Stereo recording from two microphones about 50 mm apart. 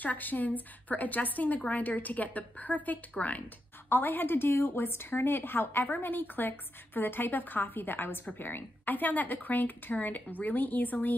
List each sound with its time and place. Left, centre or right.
0.0 s speech: left
3.9 s a woman's voice: left